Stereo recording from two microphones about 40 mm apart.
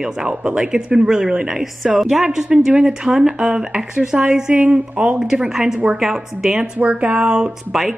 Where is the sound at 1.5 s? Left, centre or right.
Centre; by 5.2 s right.